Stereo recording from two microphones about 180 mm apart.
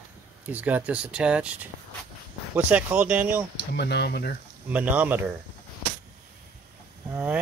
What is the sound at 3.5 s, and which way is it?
Speech, 70° left (ahead or behind).